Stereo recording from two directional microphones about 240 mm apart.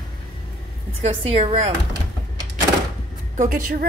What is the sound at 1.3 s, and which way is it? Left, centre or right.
Speech, right.